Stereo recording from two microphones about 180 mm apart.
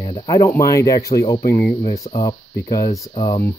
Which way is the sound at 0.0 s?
25° left (ahead or behind).